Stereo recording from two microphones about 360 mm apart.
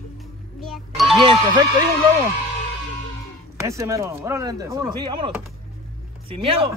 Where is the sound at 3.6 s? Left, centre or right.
Centre.